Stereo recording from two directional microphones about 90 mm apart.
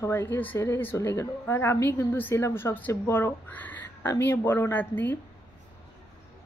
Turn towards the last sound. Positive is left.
turn(degrees=20)  # may be behind; listen again after turning